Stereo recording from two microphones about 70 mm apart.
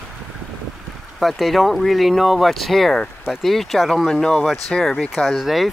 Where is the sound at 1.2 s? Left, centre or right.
Centre.